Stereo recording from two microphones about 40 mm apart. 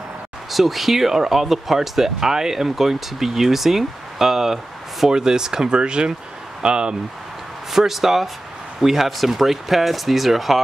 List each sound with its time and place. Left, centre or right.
0.5 s speech: centre; by 7.0 s right
7.7 s speech: centre